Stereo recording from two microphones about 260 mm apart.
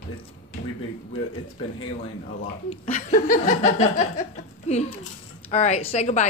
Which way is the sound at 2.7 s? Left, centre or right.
Left.